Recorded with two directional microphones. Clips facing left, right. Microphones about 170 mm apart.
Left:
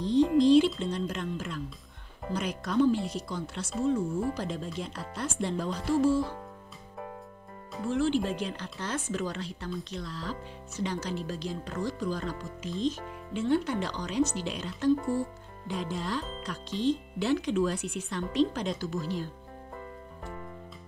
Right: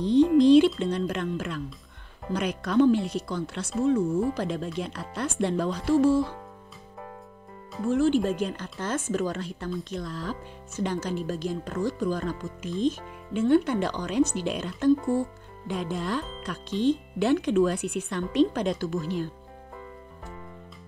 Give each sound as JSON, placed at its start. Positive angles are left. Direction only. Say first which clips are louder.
{"t": 0.0, "sound": "speech", "louder": "right 4 dB", "side_deg": -60}
{"t": 7.9, "sound": "speech", "louder": "right 5 dB", "side_deg": -45}